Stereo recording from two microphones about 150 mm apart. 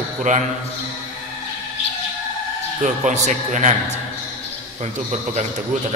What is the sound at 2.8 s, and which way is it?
Speech, 50° right (ahead or behind).